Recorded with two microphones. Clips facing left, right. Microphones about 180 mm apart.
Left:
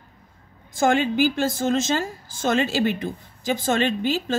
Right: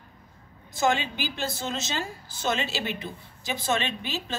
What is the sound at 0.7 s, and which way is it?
A woman's voice, 50° left (ahead or behind).